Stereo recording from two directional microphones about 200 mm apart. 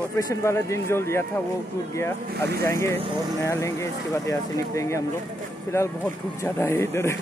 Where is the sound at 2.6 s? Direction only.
15° left (ahead or behind).